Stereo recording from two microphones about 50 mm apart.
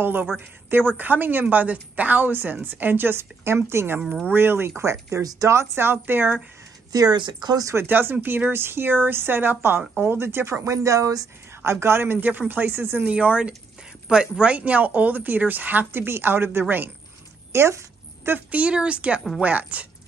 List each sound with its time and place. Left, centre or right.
0.0 s speech: right
7.8 s speech: right
10.6 s speech: right
11.6 s speech: right
13.0 s speech: right
17.5 s a sound: right
18.5 s speech: right